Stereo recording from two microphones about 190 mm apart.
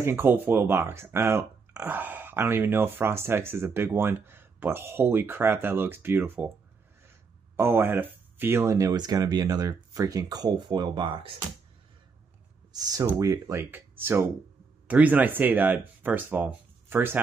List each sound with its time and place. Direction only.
0.0 s speech: 10° right (ahead or behind)
7.5 s speech: 10° right (ahead or behind)
12.7 s speech: 20° right (ahead or behind)